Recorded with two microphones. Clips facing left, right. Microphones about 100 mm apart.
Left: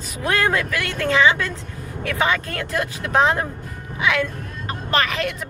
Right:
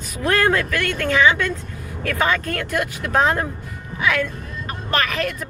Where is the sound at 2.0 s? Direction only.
15° left (ahead or behind).